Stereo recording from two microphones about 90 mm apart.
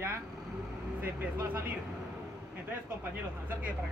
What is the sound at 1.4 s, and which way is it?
Speech, 20° right (ahead or behind).